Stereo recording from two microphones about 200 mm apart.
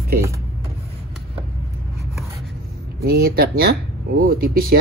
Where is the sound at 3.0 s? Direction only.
50° right (ahead or behind).